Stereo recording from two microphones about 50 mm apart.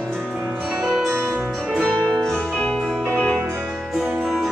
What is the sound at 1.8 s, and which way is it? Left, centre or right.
Music, centre.